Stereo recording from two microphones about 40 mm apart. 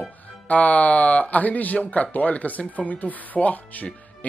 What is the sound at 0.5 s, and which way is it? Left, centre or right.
Speech, left.